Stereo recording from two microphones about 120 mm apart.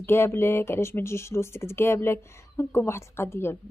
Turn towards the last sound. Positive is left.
turn(degrees=20)  # may be behind; listen again after turning